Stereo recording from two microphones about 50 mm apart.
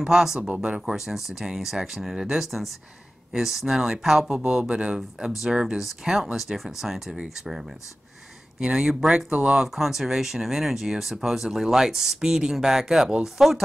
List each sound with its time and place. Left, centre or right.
0.0 s speech: centre
9.8 s speech: centre